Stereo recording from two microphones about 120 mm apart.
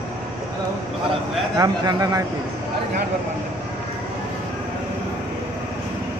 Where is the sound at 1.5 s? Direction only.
35° right (ahead or behind).